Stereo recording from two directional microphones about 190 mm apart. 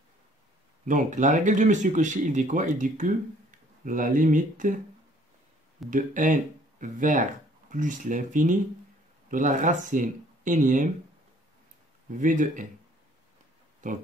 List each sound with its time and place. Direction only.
0.8 s speech: 40° right (ahead or behind)
5.9 s speech: 45° right (ahead or behind)
12.2 s speech: 45° right (ahead or behind)
13.8 s speech: 40° right (ahead or behind)